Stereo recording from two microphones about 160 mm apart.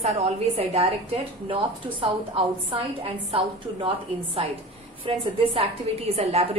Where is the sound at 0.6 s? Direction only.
35° right (ahead or behind).